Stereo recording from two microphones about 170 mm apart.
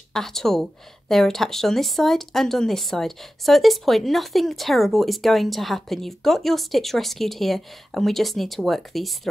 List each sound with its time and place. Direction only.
0.1 s a woman's voice: centre (ahead or behind)